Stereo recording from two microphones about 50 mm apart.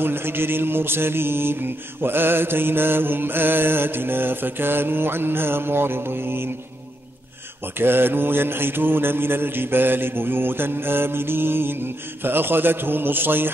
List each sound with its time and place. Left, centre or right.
0.0 s mantra: right
7.8 s mantra: right